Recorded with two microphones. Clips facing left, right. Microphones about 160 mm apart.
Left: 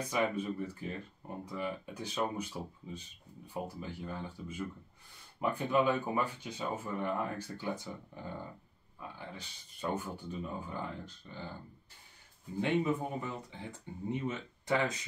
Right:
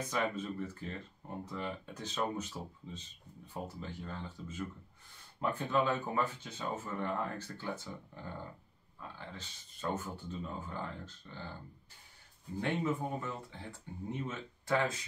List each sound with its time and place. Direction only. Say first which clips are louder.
0.1 s speech: left 4 dB; 10° left (ahead or behind)
12.5 s speech: left 3 dB; 15° left (ahead or behind)